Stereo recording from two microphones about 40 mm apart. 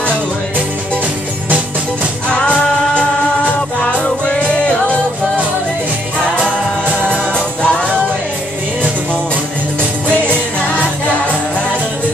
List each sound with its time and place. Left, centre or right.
2.2 s music: left
7.1 s music: left
10.2 s music: left